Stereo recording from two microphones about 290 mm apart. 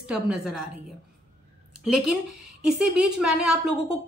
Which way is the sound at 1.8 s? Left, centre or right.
Centre.